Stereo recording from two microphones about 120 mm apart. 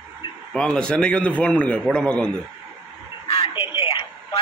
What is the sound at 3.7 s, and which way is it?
Telephone, 50° left (ahead or behind).